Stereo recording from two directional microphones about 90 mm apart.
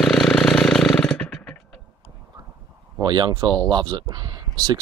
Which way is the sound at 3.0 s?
55° right (ahead or behind).